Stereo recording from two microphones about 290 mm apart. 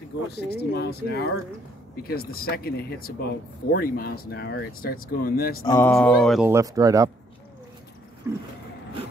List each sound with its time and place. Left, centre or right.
0.3 s speech: left
5.6 s speech: centre
8.3 s vehicle: centre